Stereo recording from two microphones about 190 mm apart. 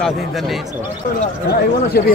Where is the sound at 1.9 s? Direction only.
55° left (ahead or behind).